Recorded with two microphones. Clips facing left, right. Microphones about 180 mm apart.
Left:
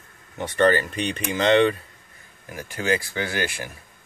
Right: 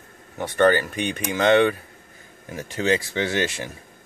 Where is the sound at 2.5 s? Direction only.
25° right (ahead or behind).